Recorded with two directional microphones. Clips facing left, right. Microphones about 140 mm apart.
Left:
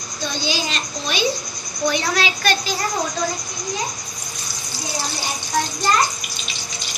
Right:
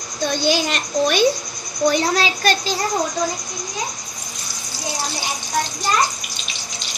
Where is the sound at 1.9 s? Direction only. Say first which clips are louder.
Right 3 dB; 40° right (ahead or behind).